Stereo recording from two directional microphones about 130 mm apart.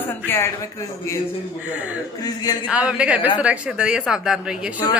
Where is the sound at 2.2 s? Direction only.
30° left (ahead or behind).